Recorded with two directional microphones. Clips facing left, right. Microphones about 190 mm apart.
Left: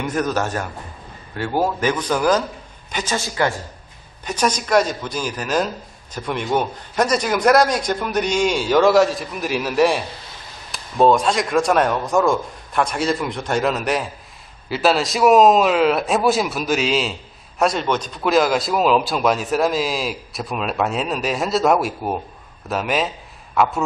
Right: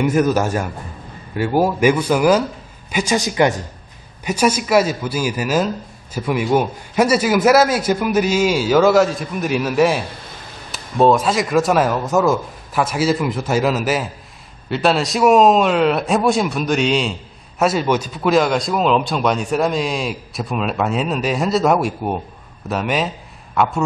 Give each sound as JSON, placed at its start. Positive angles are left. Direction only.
{"t": 0.0, "sound": "a man's voice", "side_deg": -10}